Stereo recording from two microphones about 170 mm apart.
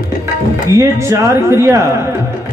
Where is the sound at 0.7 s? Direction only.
15° right (ahead or behind).